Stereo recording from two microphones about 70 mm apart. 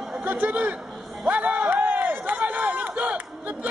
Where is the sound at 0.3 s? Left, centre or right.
Right.